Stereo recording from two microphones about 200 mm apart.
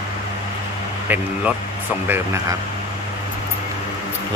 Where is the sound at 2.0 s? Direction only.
10° right (ahead or behind).